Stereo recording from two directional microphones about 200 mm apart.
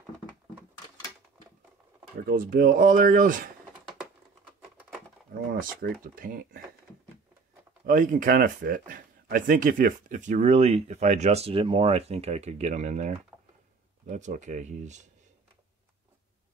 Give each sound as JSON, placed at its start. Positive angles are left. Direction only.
{"t": 2.2, "sound": "speech", "side_deg": -45}
{"t": 5.5, "sound": "speech", "side_deg": -45}
{"t": 7.8, "sound": "speech", "side_deg": -40}